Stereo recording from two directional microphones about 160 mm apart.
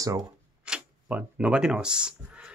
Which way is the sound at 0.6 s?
5° right (ahead or behind).